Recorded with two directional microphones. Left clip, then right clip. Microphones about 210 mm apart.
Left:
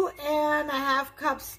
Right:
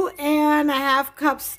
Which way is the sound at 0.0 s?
55° right (ahead or behind).